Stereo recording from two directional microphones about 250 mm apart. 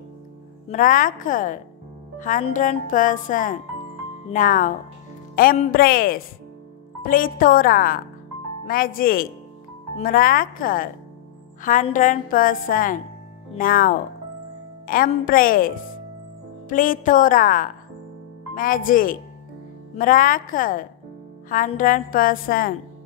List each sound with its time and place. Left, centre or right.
0.7 s speech: left